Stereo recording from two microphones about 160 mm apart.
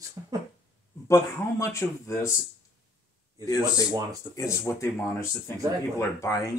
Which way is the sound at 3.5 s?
20° left (ahead or behind).